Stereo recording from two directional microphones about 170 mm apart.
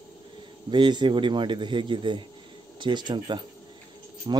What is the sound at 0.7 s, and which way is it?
A man's voice, 25° right (ahead or behind).